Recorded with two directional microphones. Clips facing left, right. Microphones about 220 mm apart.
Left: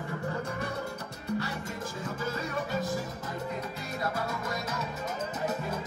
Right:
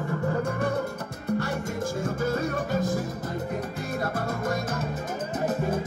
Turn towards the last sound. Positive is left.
turn(degrees=-50)  # may be behind; listen again after turning